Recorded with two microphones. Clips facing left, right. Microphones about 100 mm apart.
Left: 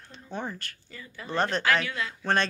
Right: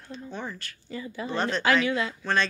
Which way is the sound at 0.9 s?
20° right (ahead or behind).